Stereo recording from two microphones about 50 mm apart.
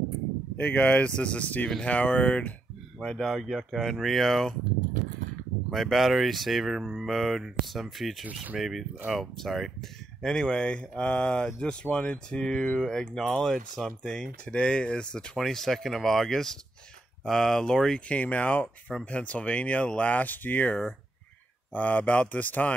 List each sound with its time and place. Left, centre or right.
0.6 s speech: left
3.0 s speech: centre
3.3 s speech: centre
5.7 s speech: centre
13.3 s speech: centre
18.0 s speech: left
21.7 s speech: left